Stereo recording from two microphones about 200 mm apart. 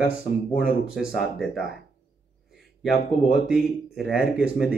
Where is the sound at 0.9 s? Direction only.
Centre (ahead or behind).